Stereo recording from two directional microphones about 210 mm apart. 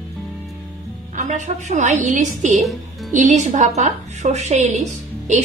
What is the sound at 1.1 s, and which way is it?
A woman's voice, 35° right (ahead or behind).